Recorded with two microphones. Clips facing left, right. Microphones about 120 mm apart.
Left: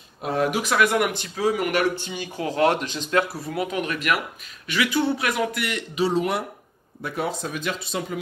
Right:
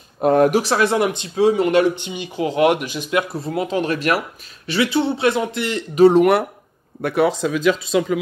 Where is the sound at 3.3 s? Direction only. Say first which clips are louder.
Right 5 dB; 25° right (ahead or behind).